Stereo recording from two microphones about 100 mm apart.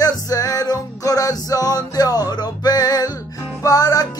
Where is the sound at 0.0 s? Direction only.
35° left (ahead or behind).